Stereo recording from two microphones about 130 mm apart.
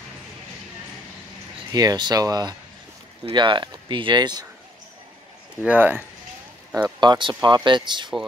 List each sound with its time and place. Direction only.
1.7 s speech: 30° right (ahead or behind)
5.7 s speech: 15° right (ahead or behind)
7.0 s speech: 35° right (ahead or behind)